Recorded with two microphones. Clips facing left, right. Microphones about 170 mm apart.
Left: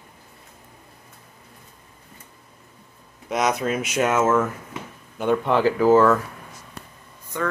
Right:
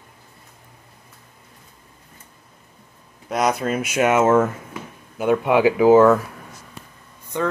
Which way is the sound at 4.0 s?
15° right (ahead or behind).